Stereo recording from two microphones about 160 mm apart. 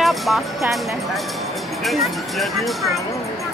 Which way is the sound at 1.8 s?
Centre (ahead or behind).